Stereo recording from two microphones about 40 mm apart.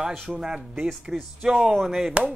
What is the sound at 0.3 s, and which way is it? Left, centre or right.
Speech, centre.